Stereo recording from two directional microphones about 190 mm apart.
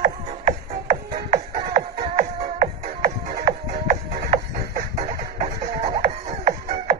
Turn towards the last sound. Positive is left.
turn(degrees=-40)  # may be behind; listen again after turning